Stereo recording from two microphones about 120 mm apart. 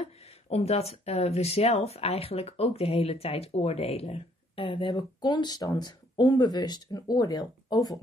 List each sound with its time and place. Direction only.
0.0 s speech: 60° left (ahead or behind); by 8.0 s 30° left (ahead or behind)